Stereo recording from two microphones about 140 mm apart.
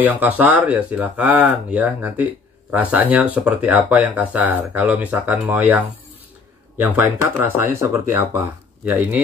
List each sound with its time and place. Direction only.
0.0 s speech: 10° right (ahead or behind)
6.8 s speech: 15° right (ahead or behind)